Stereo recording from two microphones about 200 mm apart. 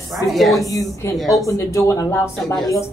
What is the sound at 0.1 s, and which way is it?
Speech, centre (ahead or behind).